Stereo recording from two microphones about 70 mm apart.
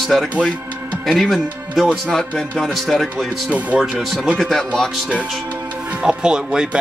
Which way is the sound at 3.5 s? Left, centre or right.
Right.